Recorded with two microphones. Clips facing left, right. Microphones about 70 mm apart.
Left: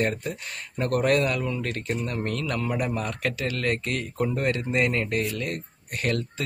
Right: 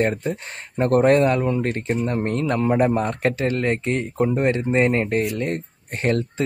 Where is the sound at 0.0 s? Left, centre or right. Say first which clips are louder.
Right 5 dB; right.